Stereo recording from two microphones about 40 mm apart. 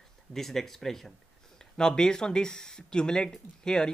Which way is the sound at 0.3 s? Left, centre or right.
Centre.